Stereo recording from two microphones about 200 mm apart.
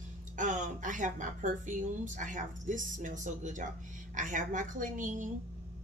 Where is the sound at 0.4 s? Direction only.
40° right (ahead or behind).